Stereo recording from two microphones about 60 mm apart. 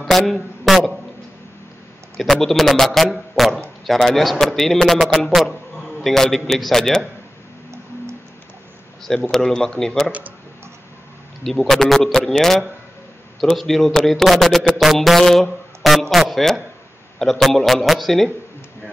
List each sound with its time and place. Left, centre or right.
0.0 s a man's voice: centre
2.1 s a man's voice: centre
9.3 s speech: centre
11.4 s a man's voice: centre